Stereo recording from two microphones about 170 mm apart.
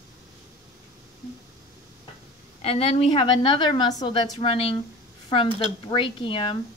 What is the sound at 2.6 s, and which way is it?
A woman's voice, 35° left (ahead or behind).